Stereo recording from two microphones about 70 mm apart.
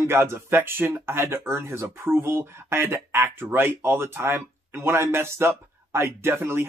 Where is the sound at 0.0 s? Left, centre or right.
Right.